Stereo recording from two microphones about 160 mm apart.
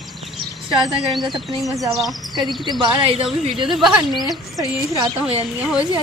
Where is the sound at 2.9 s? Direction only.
35° right (ahead or behind).